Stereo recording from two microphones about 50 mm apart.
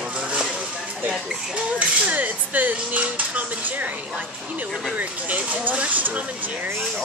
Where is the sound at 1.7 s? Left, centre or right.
Right.